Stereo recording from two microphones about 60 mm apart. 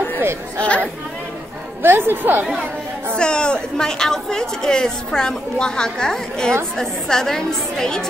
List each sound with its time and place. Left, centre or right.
0.6 s speech: left
1.8 s a woman's voice: right
3.2 s a woman's voice: centre